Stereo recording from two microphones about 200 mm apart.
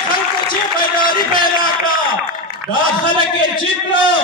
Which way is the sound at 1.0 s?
45° left (ahead or behind).